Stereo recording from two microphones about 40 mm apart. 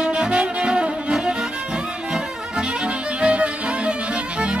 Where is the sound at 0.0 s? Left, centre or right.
Right.